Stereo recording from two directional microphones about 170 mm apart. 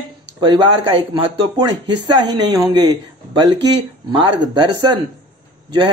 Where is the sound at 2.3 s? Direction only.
25° right (ahead or behind).